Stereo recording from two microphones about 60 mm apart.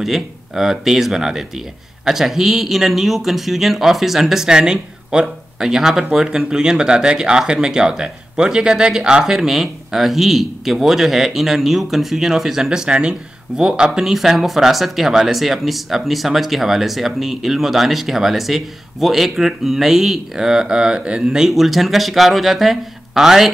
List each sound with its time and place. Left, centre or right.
0.0 s speech: centre
21.5 s speech: centre